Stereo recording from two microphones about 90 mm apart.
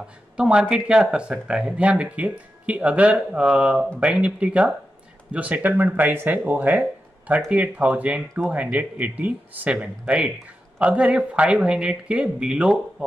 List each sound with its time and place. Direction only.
0.0 s speech: 10° right (ahead or behind)